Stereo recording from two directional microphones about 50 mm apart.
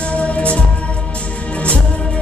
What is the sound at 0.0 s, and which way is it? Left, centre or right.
Music, left.